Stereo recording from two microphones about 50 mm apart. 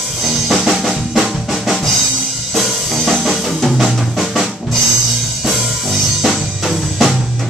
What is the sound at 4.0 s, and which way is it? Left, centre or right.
Drum, centre.